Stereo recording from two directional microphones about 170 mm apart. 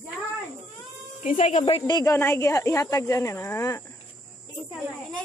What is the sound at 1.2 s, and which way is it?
Speech, 45° left (ahead or behind).